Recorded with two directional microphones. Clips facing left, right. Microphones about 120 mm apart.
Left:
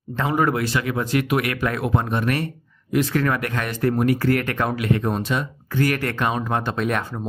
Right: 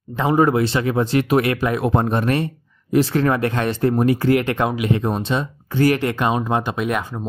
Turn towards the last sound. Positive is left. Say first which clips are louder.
# right 1 dB
turn(degrees=-5)  # may be behind; listen again after turning